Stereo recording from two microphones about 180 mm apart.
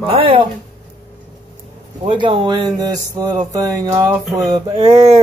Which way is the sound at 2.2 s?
25° right (ahead or behind).